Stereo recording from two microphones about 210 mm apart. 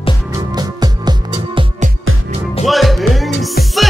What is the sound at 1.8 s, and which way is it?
Music, 35° right (ahead or behind).